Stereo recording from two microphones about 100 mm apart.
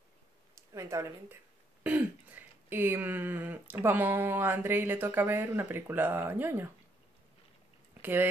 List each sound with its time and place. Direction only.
0.6 s speech: 30° right (ahead or behind)
1.8 s speech: 15° right (ahead or behind)
8.0 s speech: 20° right (ahead or behind)